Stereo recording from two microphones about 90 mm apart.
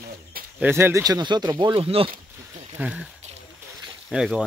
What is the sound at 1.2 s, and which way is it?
Speech, 55° right (ahead or behind).